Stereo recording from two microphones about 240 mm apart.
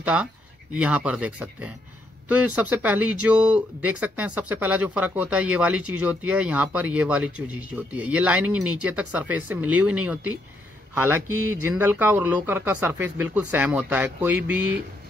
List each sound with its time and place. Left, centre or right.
0.0 s speech: centre